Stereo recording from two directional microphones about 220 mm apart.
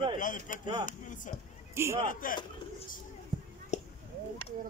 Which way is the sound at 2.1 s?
40° left (ahead or behind).